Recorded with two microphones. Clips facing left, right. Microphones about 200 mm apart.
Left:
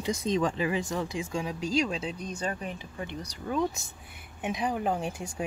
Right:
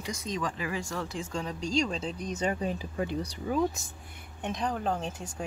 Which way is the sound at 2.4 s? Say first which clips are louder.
Right 6 dB; 25° right (ahead or behind).